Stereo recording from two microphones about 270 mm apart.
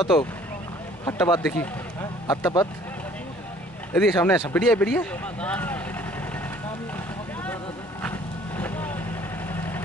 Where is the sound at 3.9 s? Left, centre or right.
Centre.